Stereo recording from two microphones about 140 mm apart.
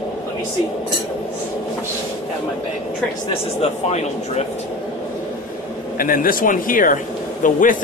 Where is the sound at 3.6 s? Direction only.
50° left (ahead or behind).